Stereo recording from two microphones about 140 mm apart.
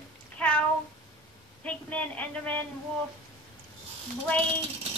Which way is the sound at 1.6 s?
10° left (ahead or behind).